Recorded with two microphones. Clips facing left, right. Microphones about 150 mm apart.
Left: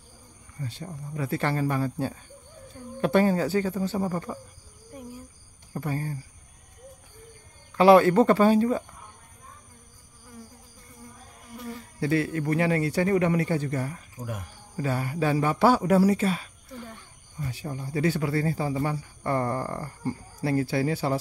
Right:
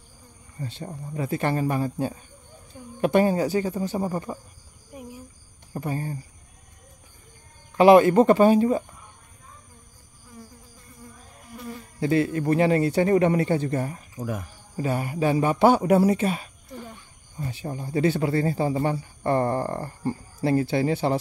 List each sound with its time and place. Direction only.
0.6 s speech: 25° right (ahead or behind)
4.9 s cricket: 15° right (ahead or behind)
5.7 s speech: 20° right (ahead or behind)
7.7 s speech: 15° right (ahead or behind)
12.0 s speech: 25° right (ahead or behind)